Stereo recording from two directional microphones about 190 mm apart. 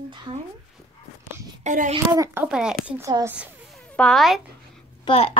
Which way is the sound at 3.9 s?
Centre (ahead or behind).